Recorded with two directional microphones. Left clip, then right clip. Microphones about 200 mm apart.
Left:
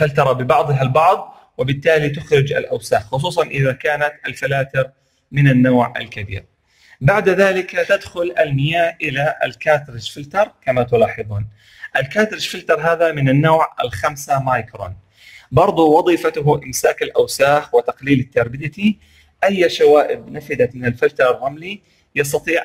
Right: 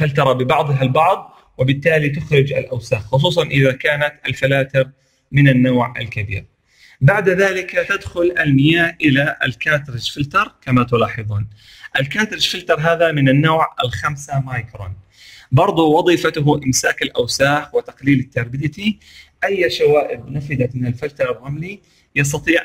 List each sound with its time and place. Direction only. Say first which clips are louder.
0.0 s a man's voice: left 1 dB; centre (ahead or behind)
14.0 s speech: left 6 dB; 20° left (ahead or behind)
15.5 s a man's voice: left 2 dB; 5° left (ahead or behind)
22.1 s a man's voice: right 1 dB; centre (ahead or behind)